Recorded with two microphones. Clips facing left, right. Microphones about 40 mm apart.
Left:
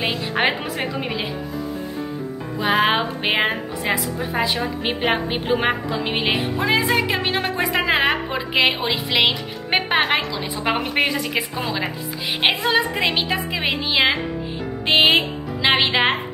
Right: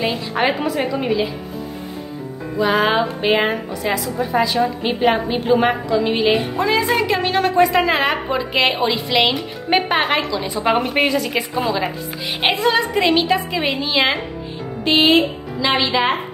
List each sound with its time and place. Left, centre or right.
0.4 s a woman's voice: left
2.6 s a woman's voice: left; by 14.2 s centre
14.9 s speech: left